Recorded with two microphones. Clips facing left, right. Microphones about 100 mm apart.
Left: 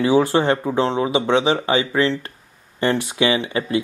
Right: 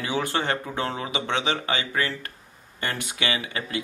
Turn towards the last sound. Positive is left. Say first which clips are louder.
# left 9 dB
turn(degrees=30)  # may be behind; listen again after turning